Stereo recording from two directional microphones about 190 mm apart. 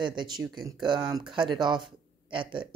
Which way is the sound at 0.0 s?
25° right (ahead or behind).